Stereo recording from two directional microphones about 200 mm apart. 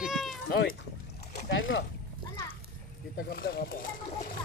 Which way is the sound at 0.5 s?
50° left (ahead or behind).